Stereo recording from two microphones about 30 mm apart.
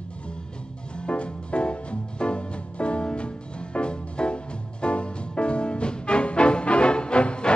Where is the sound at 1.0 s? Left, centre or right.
Left.